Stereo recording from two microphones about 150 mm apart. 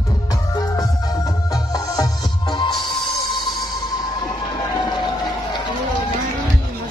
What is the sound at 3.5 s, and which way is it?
Music, 30° left (ahead or behind).